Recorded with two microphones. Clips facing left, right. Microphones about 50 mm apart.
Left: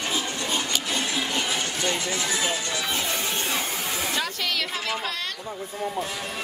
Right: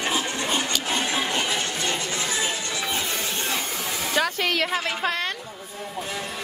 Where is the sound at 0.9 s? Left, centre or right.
Right.